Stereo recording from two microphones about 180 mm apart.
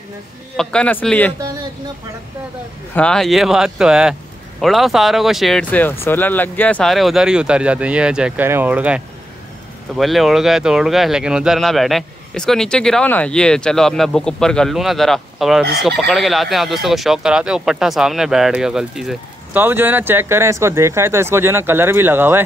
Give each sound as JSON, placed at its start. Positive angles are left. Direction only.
{"t": 0.6, "sound": "speech", "side_deg": 5}
{"t": 1.4, "sound": "speech", "side_deg": -20}
{"t": 2.9, "sound": "speech", "side_deg": 5}